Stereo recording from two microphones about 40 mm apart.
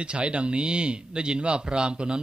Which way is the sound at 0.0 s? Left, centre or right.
Right.